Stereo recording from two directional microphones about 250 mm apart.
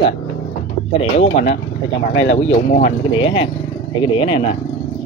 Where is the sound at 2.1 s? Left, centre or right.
Left.